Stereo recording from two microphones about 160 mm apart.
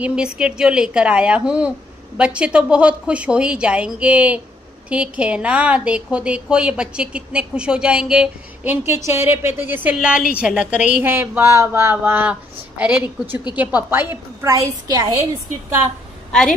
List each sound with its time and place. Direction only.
0.0 s a woman's voice: 5° right (ahead or behind)
8.8 s a woman's voice: 15° right (ahead or behind)
16.3 s a woman's voice: 5° left (ahead or behind)